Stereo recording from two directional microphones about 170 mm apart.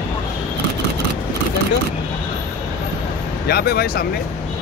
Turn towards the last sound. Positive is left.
turn(degrees=65)  # may be behind; listen again after turning